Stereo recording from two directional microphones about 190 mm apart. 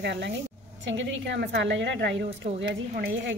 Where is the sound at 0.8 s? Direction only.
75° right (ahead or behind).